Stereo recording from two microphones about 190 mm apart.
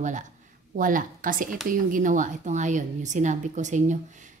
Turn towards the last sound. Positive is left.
turn(degrees=-40)  # may be behind; listen again after turning